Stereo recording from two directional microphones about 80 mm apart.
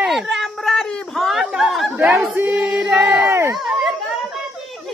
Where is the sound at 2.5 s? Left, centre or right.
Centre.